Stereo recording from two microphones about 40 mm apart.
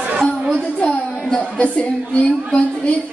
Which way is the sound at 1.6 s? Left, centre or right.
Left.